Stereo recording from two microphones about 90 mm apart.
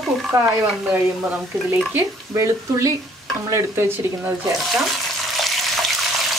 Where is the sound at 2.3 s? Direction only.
35° right (ahead or behind).